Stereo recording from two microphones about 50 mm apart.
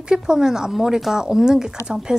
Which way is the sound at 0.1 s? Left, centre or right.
Centre.